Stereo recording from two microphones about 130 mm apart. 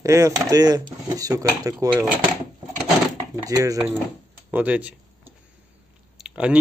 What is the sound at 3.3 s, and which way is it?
Speech, 25° right (ahead or behind).